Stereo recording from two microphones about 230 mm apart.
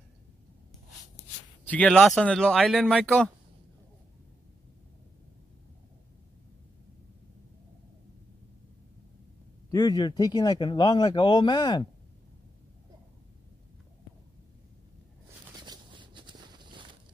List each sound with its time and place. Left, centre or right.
1.7 s speech: centre
9.7 s speech: centre
15.5 s a sound: centre